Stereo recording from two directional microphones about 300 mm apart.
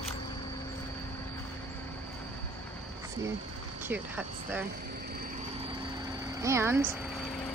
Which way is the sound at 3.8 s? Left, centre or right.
Centre.